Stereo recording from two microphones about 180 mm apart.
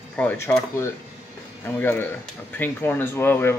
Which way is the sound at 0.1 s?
10° left (ahead or behind).